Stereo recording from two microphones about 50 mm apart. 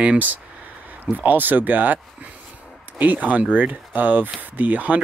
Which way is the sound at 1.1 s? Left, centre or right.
Right.